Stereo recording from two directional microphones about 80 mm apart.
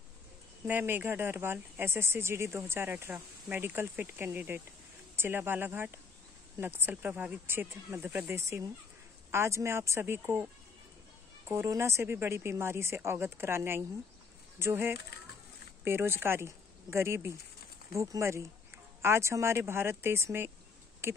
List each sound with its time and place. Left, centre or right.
0.7 s speech: right
8.3 s speech: right
11.4 s speech: right